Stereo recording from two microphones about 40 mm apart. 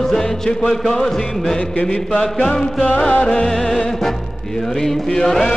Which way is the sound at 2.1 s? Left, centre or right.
Centre.